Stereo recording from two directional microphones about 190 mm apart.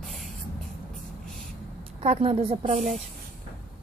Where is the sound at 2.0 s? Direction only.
30° right (ahead or behind).